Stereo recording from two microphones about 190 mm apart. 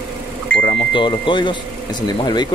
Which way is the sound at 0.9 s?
25° left (ahead or behind).